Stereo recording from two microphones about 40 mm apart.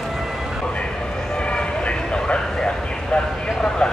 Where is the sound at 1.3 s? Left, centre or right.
Left.